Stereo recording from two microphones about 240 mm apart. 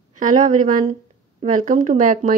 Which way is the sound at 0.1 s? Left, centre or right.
Right.